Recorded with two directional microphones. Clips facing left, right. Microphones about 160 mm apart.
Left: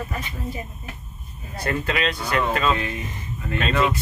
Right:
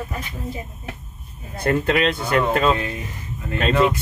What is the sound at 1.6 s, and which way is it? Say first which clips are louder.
Speech: right 5 dB; 50° right (ahead or behind).